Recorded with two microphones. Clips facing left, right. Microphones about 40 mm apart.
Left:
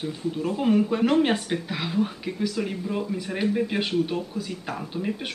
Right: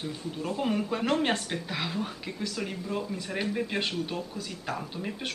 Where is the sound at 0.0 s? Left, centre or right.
Centre.